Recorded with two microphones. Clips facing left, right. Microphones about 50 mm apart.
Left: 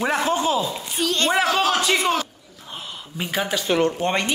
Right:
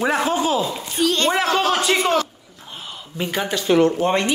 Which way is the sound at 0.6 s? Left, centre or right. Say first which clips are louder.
Right 3 dB; right.